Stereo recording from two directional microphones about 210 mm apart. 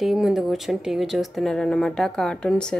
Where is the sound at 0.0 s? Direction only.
Centre (ahead or behind).